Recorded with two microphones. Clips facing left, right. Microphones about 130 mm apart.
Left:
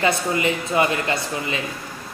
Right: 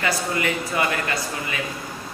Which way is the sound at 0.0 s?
20° left (ahead or behind).